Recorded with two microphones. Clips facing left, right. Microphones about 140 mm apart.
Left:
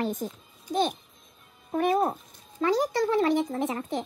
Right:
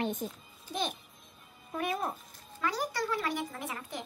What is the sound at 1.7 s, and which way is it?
Speech, 40° left (ahead or behind).